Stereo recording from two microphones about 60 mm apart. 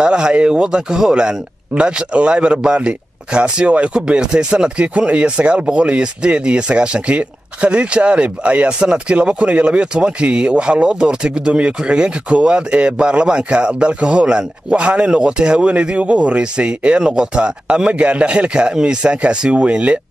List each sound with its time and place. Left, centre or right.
0.0 s speech: centre